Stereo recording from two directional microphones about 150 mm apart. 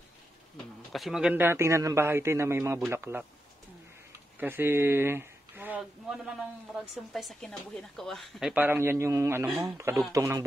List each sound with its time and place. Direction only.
0.9 s a man's voice: centre (ahead or behind)
4.4 s a sound: 15° right (ahead or behind)
7.1 s speech: centre (ahead or behind); by 10.4 s 20° right (ahead or behind)